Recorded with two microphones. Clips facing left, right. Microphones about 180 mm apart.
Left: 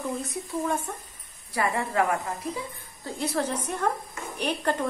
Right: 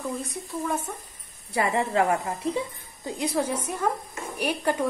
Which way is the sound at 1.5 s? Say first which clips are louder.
Right 3 dB; 20° right (ahead or behind).